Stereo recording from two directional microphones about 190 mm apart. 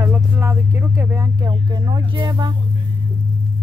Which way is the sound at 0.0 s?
10° right (ahead or behind).